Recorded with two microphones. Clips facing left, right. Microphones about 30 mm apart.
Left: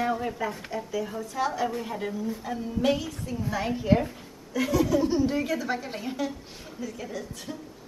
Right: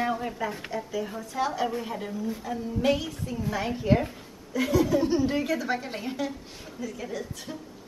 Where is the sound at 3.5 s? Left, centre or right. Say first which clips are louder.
Left 1 dB; centre.